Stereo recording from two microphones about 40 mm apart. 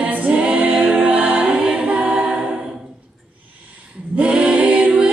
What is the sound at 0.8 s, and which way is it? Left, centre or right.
Music, right.